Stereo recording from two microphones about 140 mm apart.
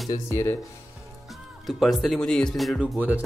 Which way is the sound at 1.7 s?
Centre (ahead or behind).